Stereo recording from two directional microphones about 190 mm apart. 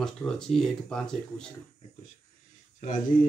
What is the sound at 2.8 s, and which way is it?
Speech, 40° left (ahead or behind).